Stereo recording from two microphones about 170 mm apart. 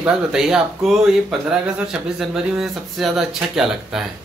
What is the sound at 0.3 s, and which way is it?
Speech, 5° right (ahead or behind).